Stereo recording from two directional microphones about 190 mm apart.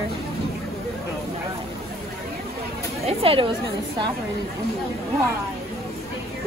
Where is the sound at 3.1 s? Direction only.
30° right (ahead or behind).